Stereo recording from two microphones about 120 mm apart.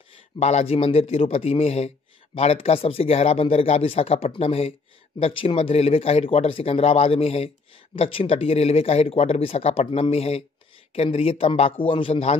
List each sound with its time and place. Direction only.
0.4 s speech: 65° left (ahead or behind)